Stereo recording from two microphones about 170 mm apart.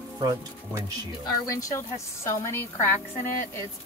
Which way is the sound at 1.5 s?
20° left (ahead or behind).